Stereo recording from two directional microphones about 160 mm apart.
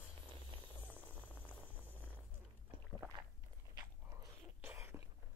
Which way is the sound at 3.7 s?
20° right (ahead or behind).